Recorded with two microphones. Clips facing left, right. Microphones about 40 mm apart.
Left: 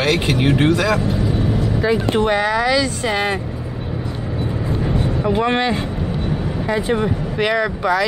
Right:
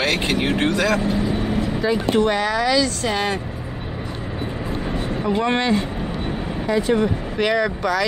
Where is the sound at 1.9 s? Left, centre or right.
Left.